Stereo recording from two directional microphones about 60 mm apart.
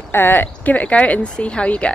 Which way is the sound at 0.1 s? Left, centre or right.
Left.